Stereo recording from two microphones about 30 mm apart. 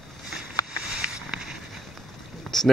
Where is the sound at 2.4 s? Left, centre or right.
Centre.